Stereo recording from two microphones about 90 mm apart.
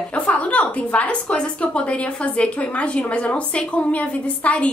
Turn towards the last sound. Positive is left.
turn(degrees=15)  # may be behind; listen again after turning